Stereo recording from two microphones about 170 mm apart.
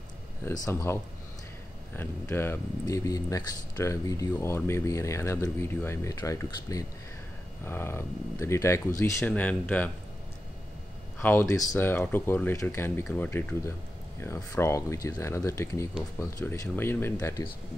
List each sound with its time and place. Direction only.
0.5 s speech: 15° left (ahead or behind)
2.0 s speech: 15° left (ahead or behind)
11.1 s speech: 15° left (ahead or behind)